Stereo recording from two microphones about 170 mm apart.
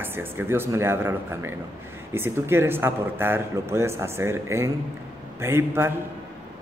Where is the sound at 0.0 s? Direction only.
10° right (ahead or behind).